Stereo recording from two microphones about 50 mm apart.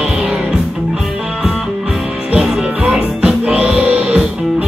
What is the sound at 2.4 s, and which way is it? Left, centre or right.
Music, centre.